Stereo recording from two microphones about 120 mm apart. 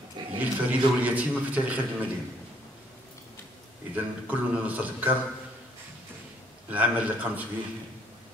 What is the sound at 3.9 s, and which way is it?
A man's voice, 15° right (ahead or behind).